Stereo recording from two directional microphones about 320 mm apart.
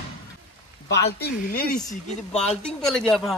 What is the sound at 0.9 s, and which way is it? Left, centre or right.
Speech, left.